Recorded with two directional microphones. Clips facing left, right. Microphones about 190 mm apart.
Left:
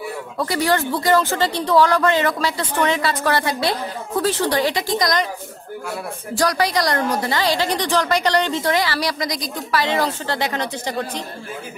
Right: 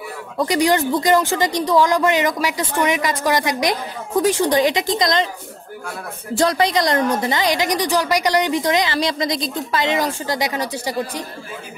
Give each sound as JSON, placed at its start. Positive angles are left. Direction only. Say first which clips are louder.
{"t": 0.4, "sound": "speech", "louder": "right 3 dB", "side_deg": -15}
{"t": 6.3, "sound": "a woman's voice", "louder": "right 2 dB", "side_deg": -25}